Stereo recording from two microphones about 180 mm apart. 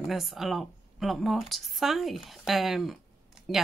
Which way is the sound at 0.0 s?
Centre (ahead or behind).